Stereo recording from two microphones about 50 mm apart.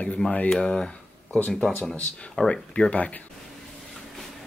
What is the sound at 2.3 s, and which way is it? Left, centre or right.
Speech, centre.